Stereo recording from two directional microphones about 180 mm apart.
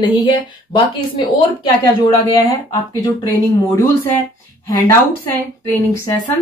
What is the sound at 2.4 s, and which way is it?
Speech, 20° left (ahead or behind).